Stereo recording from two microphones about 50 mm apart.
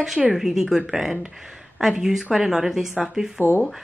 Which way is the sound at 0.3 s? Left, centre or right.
Centre.